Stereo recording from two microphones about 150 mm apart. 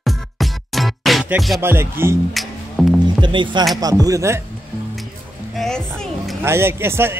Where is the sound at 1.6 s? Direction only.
15° right (ahead or behind).